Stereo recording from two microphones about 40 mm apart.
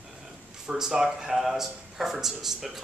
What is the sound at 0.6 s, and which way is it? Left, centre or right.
Speech, centre.